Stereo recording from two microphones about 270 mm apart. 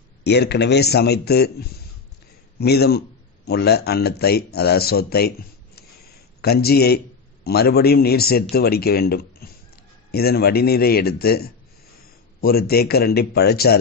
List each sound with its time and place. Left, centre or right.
0.2 s speech: left
6.4 s speech: left